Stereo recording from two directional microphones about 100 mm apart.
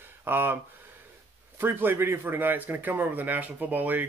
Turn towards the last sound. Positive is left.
turn(degrees=-15)  # may be behind; listen again after turning